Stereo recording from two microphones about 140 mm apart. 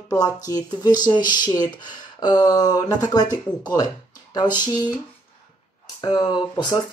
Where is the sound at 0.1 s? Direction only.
25° left (ahead or behind).